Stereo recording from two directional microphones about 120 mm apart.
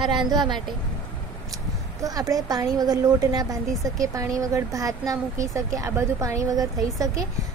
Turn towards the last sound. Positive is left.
turn(degrees=-30)  # may be behind; listen again after turning